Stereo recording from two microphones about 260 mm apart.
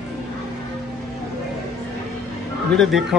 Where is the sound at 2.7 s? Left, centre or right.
Centre.